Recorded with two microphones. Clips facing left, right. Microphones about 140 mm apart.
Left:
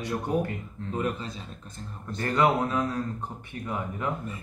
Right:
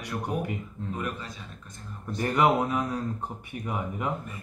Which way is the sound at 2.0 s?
10° right (ahead or behind).